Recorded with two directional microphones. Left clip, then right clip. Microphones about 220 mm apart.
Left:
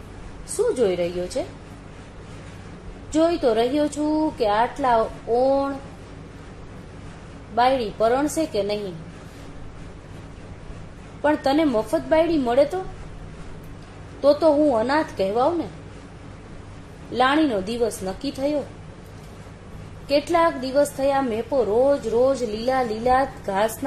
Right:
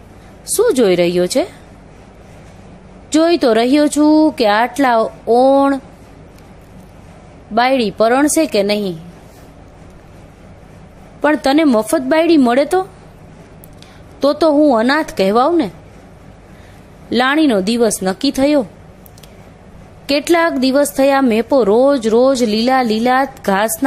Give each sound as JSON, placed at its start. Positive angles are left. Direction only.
{"t": 0.6, "sound": "a woman's voice", "side_deg": -35}
{"t": 3.1, "sound": "a woman's voice", "side_deg": -35}
{"t": 7.5, "sound": "a woman's voice", "side_deg": -35}
{"t": 11.2, "sound": "a woman's voice", "side_deg": -35}
{"t": 14.7, "sound": "a woman's voice", "side_deg": -45}
{"t": 17.1, "sound": "a woman's voice", "side_deg": -35}
{"t": 20.1, "sound": "a woman's voice", "side_deg": -40}